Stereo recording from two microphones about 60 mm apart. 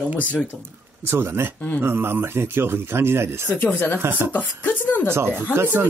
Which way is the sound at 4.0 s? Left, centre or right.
Right.